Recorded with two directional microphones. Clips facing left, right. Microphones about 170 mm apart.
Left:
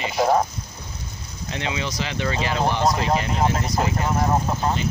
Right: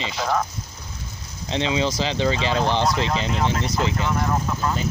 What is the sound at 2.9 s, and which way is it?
Speech, 35° left (ahead or behind).